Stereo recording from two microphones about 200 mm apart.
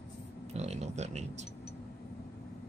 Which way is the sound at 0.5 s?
35° right (ahead or behind).